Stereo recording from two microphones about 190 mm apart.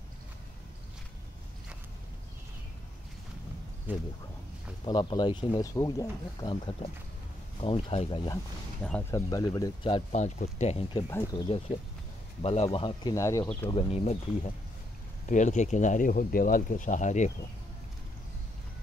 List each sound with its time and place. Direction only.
3.9 s speech: 10° right (ahead or behind)
4.8 s speech: 25° left (ahead or behind)
10.1 s speech: 35° left (ahead or behind)
11.1 s speech: 15° left (ahead or behind)
11.4 s speech: 30° left (ahead or behind)
13.7 s speech: 30° left (ahead or behind)